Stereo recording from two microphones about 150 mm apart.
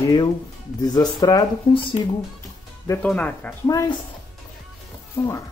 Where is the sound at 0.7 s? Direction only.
25° left (ahead or behind).